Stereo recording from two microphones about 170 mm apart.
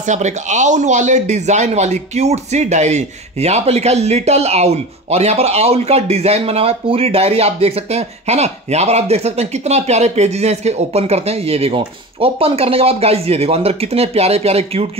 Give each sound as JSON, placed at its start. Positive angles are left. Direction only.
{"t": 0.0, "sound": "speech", "side_deg": -45}